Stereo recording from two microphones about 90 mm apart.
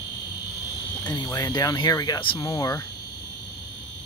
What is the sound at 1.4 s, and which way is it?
Speech, 45° left (ahead or behind).